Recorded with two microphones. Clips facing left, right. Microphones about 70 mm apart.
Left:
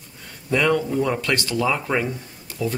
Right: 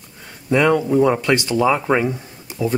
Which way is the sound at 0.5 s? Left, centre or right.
Centre.